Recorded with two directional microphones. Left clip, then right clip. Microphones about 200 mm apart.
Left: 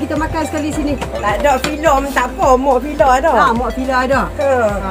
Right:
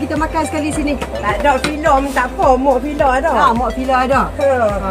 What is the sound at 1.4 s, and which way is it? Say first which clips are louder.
Music: even; 35° left (ahead or behind).